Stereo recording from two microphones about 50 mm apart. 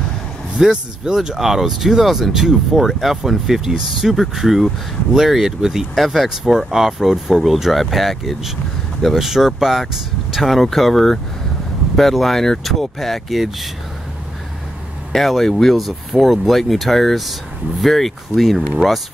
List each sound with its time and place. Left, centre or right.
0.6 s speech: centre
15.1 s speech: centre